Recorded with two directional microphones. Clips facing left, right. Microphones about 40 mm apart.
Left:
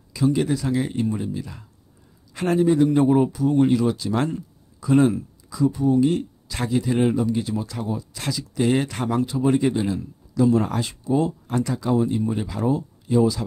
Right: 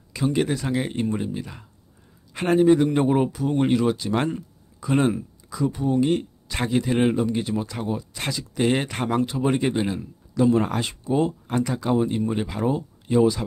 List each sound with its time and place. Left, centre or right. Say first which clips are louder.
0.1 s speech: left 2 dB; right
2.7 s speech: even; right
3.1 s speech: left 3 dB; right